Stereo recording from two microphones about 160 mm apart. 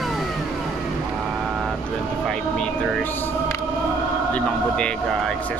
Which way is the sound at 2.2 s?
5° left (ahead or behind).